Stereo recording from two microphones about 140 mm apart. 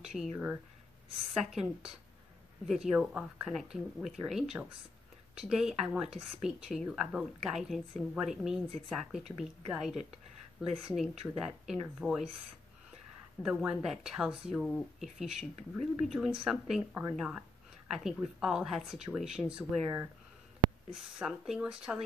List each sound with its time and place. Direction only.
0.0 s a sound: centre (ahead or behind)
1.4 s speech: centre (ahead or behind)
13.4 s speech: 5° right (ahead or behind)
19.5 s speech: 15° right (ahead or behind)
20.9 s speech: centre (ahead or behind)